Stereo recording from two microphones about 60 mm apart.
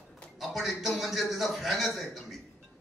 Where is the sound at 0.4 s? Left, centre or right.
Centre.